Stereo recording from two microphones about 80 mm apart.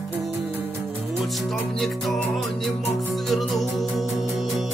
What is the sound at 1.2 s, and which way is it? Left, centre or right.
Music, centre.